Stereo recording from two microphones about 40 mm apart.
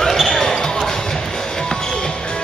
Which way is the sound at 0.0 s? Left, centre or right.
Centre.